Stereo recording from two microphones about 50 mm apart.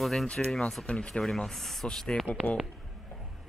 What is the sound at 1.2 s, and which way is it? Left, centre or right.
Speech, centre.